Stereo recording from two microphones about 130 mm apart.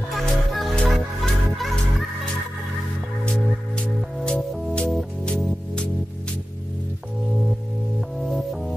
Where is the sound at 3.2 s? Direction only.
5° left (ahead or behind).